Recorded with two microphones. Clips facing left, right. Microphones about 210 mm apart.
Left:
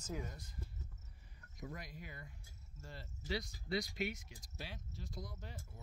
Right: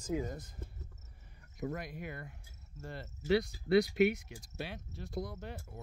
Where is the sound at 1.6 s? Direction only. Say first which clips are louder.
Right 10 dB; 60° right (ahead or behind).